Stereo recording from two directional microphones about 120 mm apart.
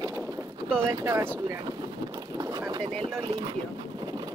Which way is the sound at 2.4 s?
30° right (ahead or behind).